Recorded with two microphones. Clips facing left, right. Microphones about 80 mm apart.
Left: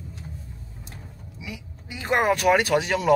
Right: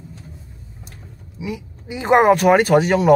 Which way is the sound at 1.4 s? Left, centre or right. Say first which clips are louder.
Right 10 dB; right.